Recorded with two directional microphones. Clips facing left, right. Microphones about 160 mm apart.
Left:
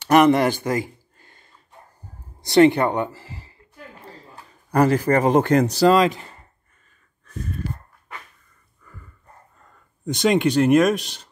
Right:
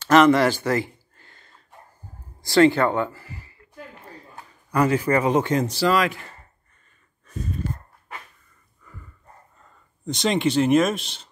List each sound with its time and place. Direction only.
0.0 s a sound: 15° left (ahead or behind)
2.4 s speech: 20° left (ahead or behind)
3.1 s a sound: 30° left (ahead or behind)
4.6 s a man's voice: 35° left (ahead or behind); by 5.7 s 60° left (ahead or behind)
5.7 s a man's voice: 40° left (ahead or behind)
5.9 s speech: 20° left (ahead or behind)
10.1 s speech: 5° left (ahead or behind)